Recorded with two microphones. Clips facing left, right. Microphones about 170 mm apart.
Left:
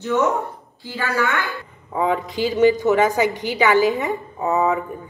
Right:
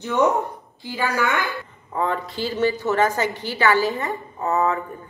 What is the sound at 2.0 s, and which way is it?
A woman's voice, 15° left (ahead or behind).